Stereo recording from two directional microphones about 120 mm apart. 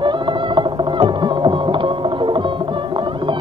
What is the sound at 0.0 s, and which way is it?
Whale vocalization, 40° right (ahead or behind).